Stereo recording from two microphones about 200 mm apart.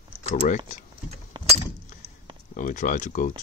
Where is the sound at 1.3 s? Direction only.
20° right (ahead or behind).